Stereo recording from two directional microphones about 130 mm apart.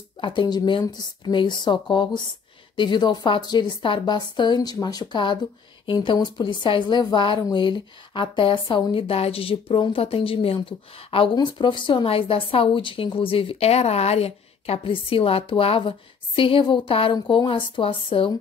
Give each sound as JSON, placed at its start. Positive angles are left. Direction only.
{"t": 0.2, "sound": "speech", "side_deg": 40}